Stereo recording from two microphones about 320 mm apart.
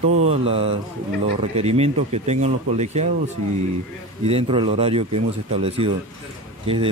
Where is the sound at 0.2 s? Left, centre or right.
Centre.